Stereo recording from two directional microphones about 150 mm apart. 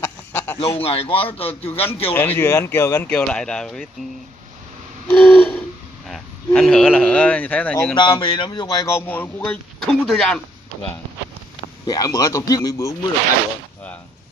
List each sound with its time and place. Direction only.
0.0 s a sound: 15° left (ahead or behind)
0.6 s a man's voice: 40° left (ahead or behind)
2.1 s speech: 15° left (ahead or behind)
5.0 s owl: 10° left (ahead or behind)
6.0 s a sound: centre (ahead or behind)
7.1 s speech: 10° left (ahead or behind)
7.9 s a man's voice: 35° left (ahead or behind); by 10.4 s 5° left (ahead or behind)
11.8 s speech: 25° left (ahead or behind)